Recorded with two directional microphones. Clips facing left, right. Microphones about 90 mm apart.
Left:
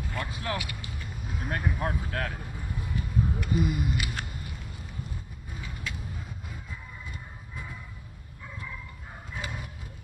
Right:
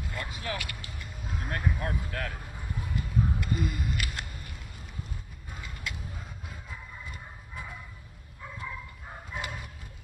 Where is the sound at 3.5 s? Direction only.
10° left (ahead or behind).